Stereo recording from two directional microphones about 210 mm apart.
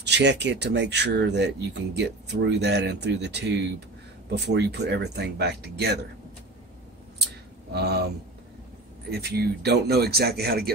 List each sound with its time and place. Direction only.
0.0 s speech: 55° right (ahead or behind)
7.7 s speech: 50° right (ahead or behind)
9.1 s speech: 50° right (ahead or behind)